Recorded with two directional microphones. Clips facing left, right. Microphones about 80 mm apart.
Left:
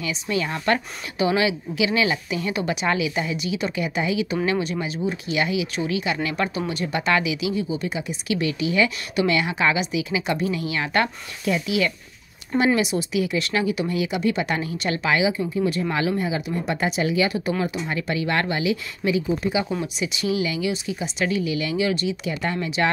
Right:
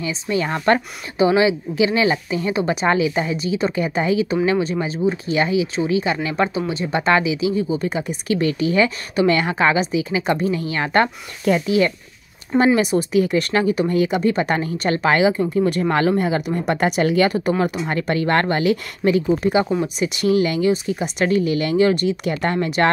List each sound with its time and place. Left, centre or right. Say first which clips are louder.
0.0 s speech: right 3 dB; right